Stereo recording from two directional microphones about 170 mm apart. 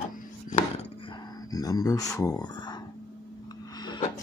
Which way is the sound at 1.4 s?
20° left (ahead or behind).